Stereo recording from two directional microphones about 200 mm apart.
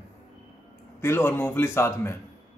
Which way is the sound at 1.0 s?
10° left (ahead or behind).